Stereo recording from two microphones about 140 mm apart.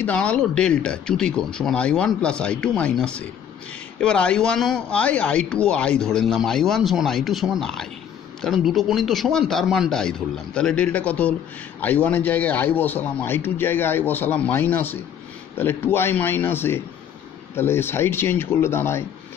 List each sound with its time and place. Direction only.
0.0 s speech: 10° left (ahead or behind)